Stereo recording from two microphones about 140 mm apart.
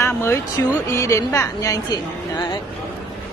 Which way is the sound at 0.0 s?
20° left (ahead or behind).